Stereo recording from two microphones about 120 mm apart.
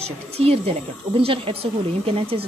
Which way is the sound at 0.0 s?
55° right (ahead or behind).